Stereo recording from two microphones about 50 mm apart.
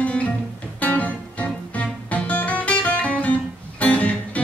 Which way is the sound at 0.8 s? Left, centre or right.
Left.